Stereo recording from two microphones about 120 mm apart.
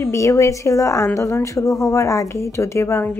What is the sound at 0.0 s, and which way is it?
A woman's voice, 25° left (ahead or behind).